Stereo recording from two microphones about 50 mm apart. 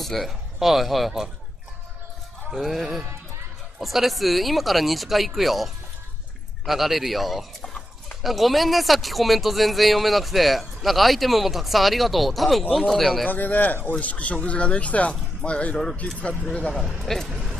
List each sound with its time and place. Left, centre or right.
0.0 s speech: centre
2.5 s speech: centre
13.3 s speech: left
15.7 s speech: centre
16.5 s speech: centre
17.0 s speech: centre